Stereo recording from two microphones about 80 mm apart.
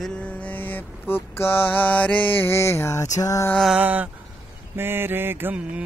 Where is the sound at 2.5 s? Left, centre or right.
Left.